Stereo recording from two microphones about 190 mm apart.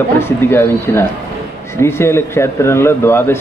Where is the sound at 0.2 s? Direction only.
10° left (ahead or behind).